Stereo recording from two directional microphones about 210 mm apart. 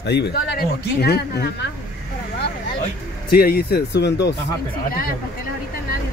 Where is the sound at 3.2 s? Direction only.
45° left (ahead or behind).